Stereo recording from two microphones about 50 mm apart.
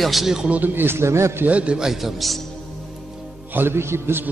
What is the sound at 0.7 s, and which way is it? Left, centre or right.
Speech, right.